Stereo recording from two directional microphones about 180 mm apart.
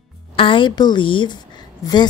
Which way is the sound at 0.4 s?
30° left (ahead or behind).